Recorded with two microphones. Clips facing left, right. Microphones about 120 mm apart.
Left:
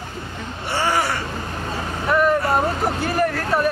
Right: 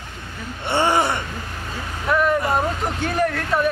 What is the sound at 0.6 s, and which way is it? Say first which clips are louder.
Speech: right 3 dB; 25° right (ahead or behind).